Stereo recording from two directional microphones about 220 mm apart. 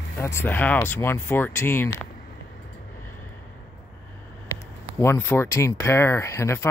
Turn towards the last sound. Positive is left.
turn(degrees=10)  # may be behind; listen again after turning